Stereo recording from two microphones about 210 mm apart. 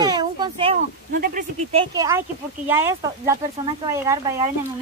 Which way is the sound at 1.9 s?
15° right (ahead or behind).